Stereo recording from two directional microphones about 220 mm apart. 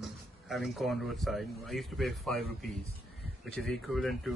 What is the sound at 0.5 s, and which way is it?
Speech, centre (ahead or behind).